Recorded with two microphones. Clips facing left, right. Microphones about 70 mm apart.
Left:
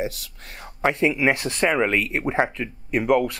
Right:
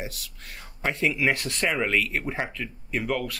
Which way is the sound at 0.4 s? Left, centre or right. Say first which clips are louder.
Left 4 dB; left.